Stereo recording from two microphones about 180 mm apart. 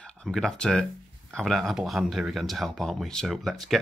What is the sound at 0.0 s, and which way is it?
Speech, 5° left (ahead or behind).